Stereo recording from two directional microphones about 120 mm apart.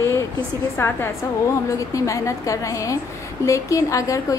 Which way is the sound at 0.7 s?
20° left (ahead or behind).